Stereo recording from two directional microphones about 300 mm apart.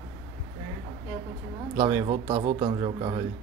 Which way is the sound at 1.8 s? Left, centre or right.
Centre.